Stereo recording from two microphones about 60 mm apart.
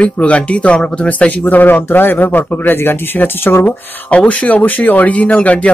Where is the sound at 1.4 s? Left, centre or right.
Left.